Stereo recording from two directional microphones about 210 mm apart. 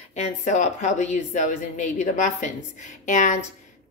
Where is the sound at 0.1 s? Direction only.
35° left (ahead or behind).